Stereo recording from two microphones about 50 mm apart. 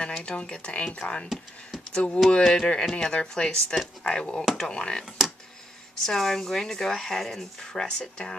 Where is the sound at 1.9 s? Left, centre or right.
Centre.